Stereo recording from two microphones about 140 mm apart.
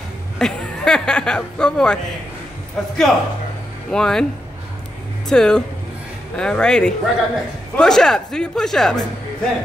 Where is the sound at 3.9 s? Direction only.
5° left (ahead or behind).